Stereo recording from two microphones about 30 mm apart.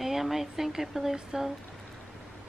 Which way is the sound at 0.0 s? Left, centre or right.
Centre.